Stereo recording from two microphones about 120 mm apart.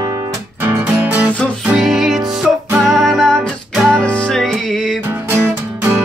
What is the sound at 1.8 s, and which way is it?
Music, centre (ahead or behind).